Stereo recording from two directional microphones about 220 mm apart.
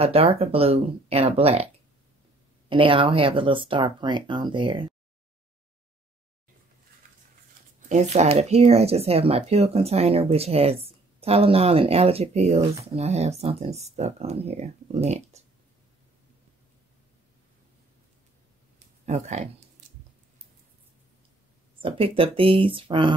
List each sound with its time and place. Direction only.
0.0 s speech: 25° right (ahead or behind)
2.7 s speech: 25° right (ahead or behind)
7.9 s speech: 30° right (ahead or behind)
19.0 s speech: 30° right (ahead or behind)
21.8 s speech: 25° right (ahead or behind)